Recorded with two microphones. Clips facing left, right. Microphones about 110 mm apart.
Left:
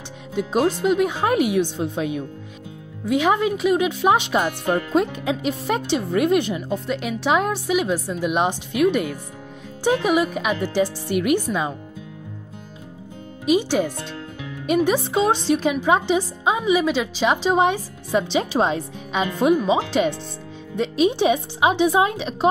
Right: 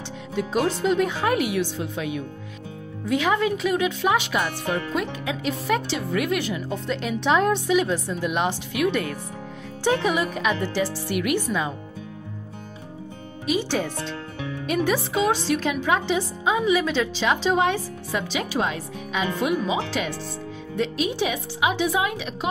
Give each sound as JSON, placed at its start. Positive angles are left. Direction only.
{"t": 0.3, "sound": "a woman's voice", "side_deg": 20}
{"t": 3.1, "sound": "a woman's voice", "side_deg": 15}
{"t": 5.2, "sound": "a woman's voice", "side_deg": 25}
{"t": 6.9, "sound": "a woman's voice", "side_deg": 10}
{"t": 9.8, "sound": "a woman's voice", "side_deg": 15}
{"t": 13.5, "sound": "a woman's voice", "side_deg": 15}